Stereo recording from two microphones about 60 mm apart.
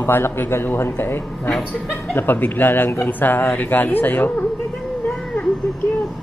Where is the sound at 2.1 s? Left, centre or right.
Left.